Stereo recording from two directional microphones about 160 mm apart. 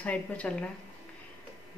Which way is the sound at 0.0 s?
10° left (ahead or behind).